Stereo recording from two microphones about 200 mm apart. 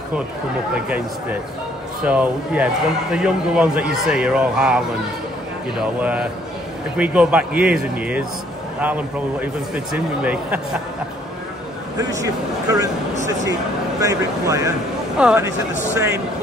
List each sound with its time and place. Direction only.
0.7 s a man's voice: 5° right (ahead or behind)
12.0 s speech: 15° right (ahead or behind)
14.0 s speech: 15° right (ahead or behind)
15.1 s a man's voice: 5° right (ahead or behind)